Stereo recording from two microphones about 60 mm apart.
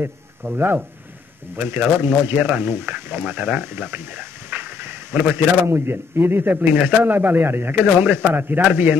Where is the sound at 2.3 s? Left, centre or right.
Right.